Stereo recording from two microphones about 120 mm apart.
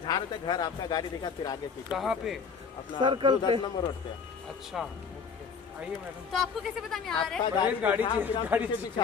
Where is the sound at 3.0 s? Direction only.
40° right (ahead or behind).